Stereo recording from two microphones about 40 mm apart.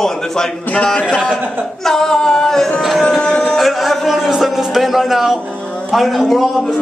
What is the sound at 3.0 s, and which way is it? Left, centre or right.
Music, left.